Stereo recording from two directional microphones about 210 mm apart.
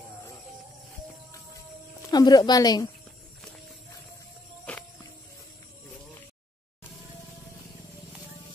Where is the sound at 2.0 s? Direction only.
20° left (ahead or behind).